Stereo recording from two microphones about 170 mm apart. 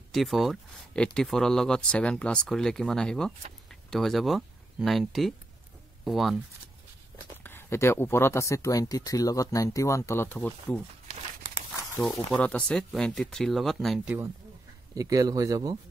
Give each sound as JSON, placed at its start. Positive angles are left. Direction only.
{"t": 0.1, "sound": "speech", "side_deg": 0}
{"t": 7.4, "sound": "speech", "side_deg": 15}
{"t": 12.0, "sound": "speech", "side_deg": 0}
{"t": 14.0, "sound": "speech", "side_deg": -10}